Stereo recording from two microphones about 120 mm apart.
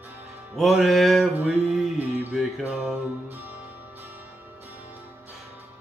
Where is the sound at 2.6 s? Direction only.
10° right (ahead or behind).